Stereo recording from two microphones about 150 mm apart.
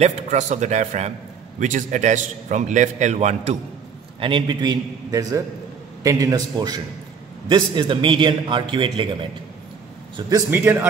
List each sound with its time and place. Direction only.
0.0 s a man's voice: 50° right (ahead or behind)
4.2 s a man's voice: 35° right (ahead or behind)
10.5 s a man's voice: 15° right (ahead or behind)